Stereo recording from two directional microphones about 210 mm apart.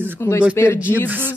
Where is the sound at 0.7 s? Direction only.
5° right (ahead or behind).